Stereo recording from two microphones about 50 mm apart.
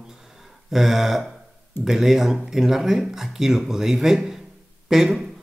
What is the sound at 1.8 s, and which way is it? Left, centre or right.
Speech, centre.